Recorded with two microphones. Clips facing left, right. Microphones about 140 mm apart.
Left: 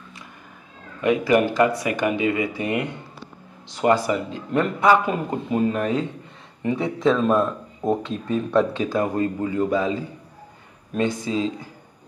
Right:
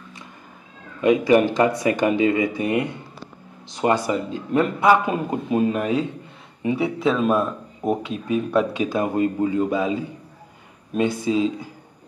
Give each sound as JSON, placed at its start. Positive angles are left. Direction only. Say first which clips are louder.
{"t": 1.0, "sound": "speech", "louder": "right 2 dB", "side_deg": -20}
{"t": 11.2, "sound": "speech", "louder": "right 4 dB", "side_deg": -15}